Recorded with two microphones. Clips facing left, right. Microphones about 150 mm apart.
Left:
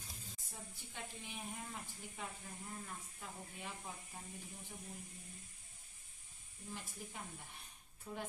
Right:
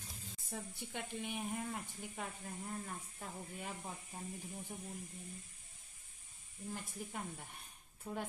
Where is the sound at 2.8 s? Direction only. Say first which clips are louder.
Right 4 dB; 45° right (ahead or behind).